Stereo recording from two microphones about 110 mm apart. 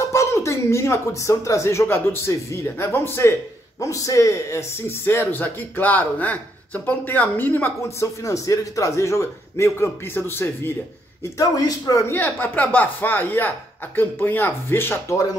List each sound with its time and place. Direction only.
0.1 s a man's voice: 25° left (ahead or behind)
11.3 s a man's voice: 35° left (ahead or behind)
12.1 s a man's voice: 15° left (ahead or behind)